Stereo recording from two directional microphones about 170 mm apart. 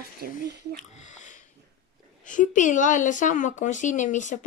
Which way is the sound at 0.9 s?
45° left (ahead or behind).